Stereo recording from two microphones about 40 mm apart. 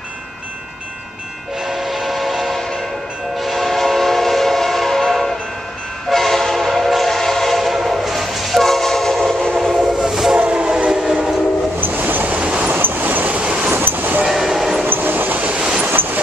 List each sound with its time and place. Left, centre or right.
1.6 s train: centre
9.6 s train: centre
10.4 s train: right
10.9 s train: centre
11.9 s train: right
12.4 s train: right
12.7 s train: right
13.4 s train: right
13.7 s train: right
14.2 s train: centre
14.9 s train: right
15.5 s train: right